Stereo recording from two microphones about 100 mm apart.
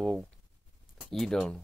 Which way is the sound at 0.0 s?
5° left (ahead or behind).